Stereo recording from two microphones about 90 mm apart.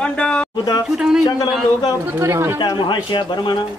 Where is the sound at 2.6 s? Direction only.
60° left (ahead or behind).